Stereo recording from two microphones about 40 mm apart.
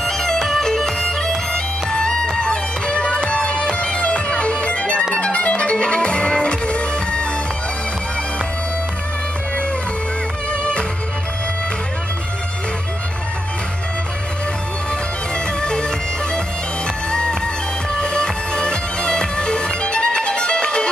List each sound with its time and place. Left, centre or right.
0.0 s music: centre; by 7.2 s left
10.5 s music: left
15.3 s music: left